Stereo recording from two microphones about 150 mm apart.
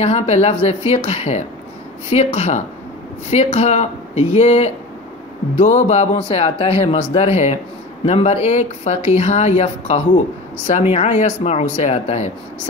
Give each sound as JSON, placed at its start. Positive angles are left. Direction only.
{"t": 0.0, "sound": "speech", "side_deg": 45}